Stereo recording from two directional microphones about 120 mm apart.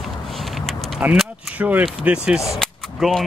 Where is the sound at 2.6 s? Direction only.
Centre (ahead or behind).